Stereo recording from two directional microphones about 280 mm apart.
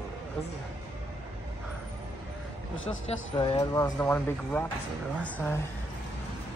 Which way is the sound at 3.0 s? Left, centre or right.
Centre.